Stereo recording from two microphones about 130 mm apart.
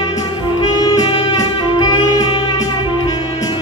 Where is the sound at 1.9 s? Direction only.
30° left (ahead or behind).